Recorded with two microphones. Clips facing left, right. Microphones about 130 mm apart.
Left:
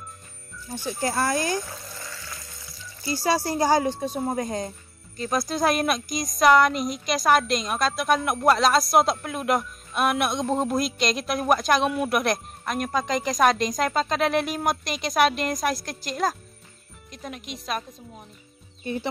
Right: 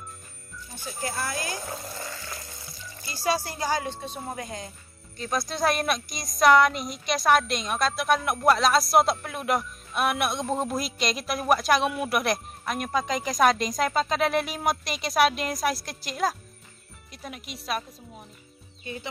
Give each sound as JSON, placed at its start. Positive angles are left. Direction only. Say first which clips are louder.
{"t": 0.7, "sound": "speech", "louder": "left 7 dB", "side_deg": 40}
{"t": 1.7, "sound": "speech", "louder": "right 4 dB", "side_deg": -30}
{"t": 3.4, "sound": "speech", "louder": "left 7 dB", "side_deg": 40}
{"t": 5.1, "sound": "speech", "louder": "left 4 dB", "side_deg": 0}